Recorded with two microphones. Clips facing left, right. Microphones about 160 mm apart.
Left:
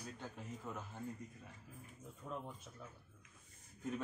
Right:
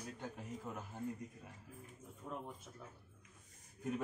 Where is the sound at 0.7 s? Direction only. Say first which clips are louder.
Even; 10° right (ahead or behind).